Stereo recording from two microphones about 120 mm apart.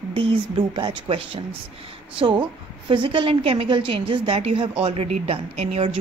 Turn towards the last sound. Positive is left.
turn(degrees=-55)  # may be behind; listen again after turning